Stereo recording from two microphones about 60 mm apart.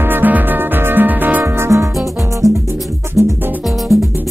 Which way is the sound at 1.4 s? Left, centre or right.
Right.